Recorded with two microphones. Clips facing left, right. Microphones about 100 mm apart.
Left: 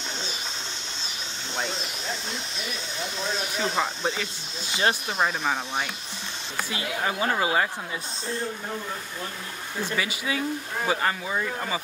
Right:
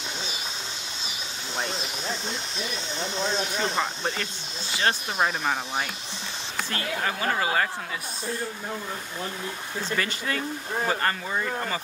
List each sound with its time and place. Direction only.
1.6 s speech: centre (ahead or behind)
3.6 s speech: centre (ahead or behind)
4.6 s speech: 20° left (ahead or behind)
5.2 s speech: centre (ahead or behind)
6.7 s speech: 15° left (ahead or behind)
9.8 s speech: 10° left (ahead or behind)